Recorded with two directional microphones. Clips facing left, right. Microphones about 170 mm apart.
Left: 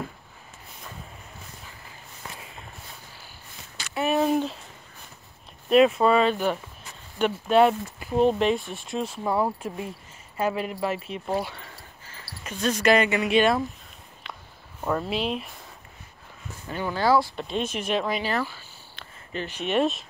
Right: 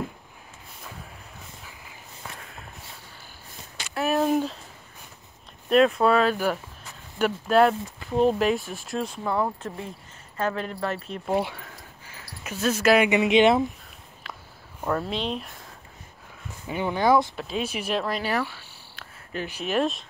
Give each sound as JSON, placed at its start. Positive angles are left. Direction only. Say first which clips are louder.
{"t": 2.3, "sound": "a sound", "louder": "even", "side_deg": 0}
{"t": 3.9, "sound": "speech", "louder": "even", "side_deg": 0}
{"t": 5.7, "sound": "speech", "louder": "left 1 dB", "side_deg": 0}
{"t": 12.1, "sound": "speech", "louder": "right 1 dB", "side_deg": -5}
{"t": 13.2, "sound": "speech", "louder": "right 3 dB", "side_deg": -20}
{"t": 14.2, "sound": "a sound", "louder": "even", "side_deg": 0}
{"t": 14.9, "sound": "speech", "louder": "left 1 dB", "side_deg": 5}
{"t": 16.8, "sound": "speech", "louder": "right 1 dB", "side_deg": -20}
{"t": 17.4, "sound": "speech", "louder": "left 1 dB", "side_deg": -5}